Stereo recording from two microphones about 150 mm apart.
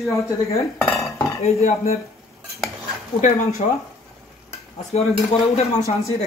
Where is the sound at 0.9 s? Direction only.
20° left (ahead or behind).